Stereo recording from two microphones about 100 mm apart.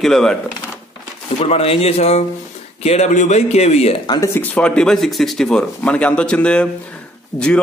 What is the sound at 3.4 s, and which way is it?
Speech, 90° left.